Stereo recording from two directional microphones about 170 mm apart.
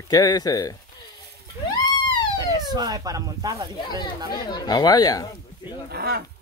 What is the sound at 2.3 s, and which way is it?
Speech, 20° right (ahead or behind).